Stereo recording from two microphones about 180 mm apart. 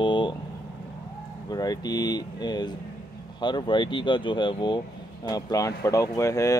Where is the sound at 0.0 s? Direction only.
25° left (ahead or behind).